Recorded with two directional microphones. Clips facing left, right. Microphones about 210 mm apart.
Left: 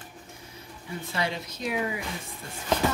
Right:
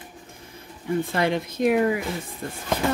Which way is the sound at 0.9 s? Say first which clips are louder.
Right 9 dB; 55° right (ahead or behind).